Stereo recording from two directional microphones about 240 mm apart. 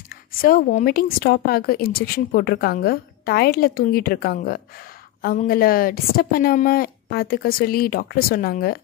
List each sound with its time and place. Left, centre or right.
0.1 s speech: left